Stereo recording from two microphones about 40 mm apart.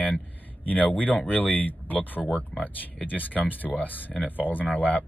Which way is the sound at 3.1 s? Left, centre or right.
Left.